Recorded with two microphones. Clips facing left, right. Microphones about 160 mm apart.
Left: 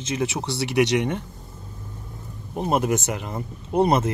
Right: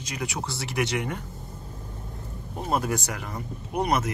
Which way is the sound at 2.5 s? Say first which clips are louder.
Left 5 dB; 20° left (ahead or behind).